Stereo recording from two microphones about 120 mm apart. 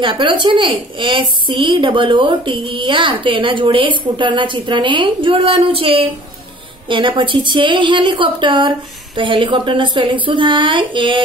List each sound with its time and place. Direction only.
0.0 s a woman's voice: 40° right (ahead or behind)